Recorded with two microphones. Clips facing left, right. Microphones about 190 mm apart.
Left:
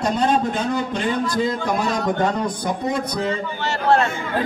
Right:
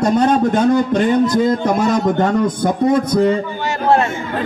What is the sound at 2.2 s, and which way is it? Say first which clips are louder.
A man's voice: right 6 dB; 45° right (ahead or behind).